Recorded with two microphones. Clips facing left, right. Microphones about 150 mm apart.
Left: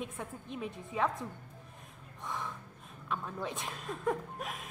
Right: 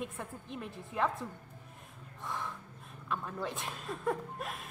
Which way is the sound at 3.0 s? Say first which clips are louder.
Even; centre (ahead or behind).